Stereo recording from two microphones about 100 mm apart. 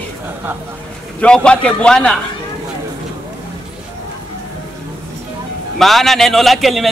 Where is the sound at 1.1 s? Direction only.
10° left (ahead or behind).